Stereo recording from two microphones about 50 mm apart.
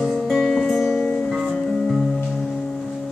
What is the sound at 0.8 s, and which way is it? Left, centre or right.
Music, centre.